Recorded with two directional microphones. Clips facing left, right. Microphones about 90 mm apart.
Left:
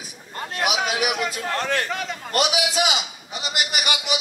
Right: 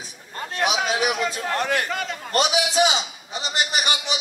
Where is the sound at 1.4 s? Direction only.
10° right (ahead or behind).